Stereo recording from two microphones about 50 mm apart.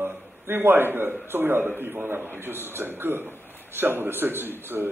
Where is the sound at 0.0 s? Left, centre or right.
Right.